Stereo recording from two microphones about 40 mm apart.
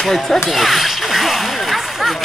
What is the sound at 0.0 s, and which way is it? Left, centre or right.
Whip, centre.